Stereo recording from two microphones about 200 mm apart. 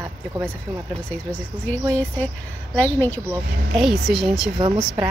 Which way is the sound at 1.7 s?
5° left (ahead or behind).